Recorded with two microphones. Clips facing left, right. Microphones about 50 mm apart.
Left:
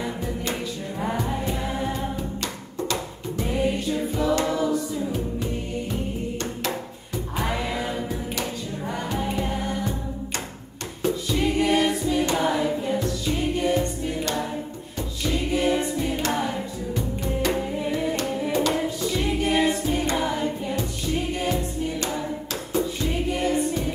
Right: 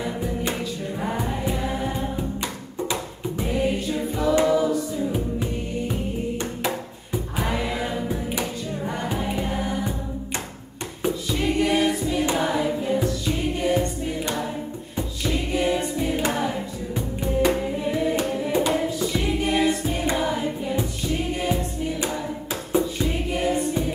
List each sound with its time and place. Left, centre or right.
0.2 s music: centre
1.9 s music: centre
3.4 s music: centre
7.3 s choir: centre
9.2 s music: centre
11.0 s music: centre
11.5 s choir: centre
13.0 s music: centre
15.5 s music: centre
17.5 s music: centre
20.2 s choir: centre
22.7 s music: centre
23.0 s choir: centre